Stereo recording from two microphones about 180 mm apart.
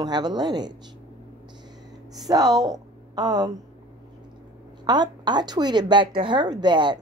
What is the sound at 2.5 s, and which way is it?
Speech, 20° right (ahead or behind).